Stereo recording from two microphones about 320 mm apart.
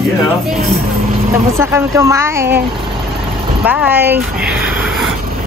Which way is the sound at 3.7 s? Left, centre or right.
Centre.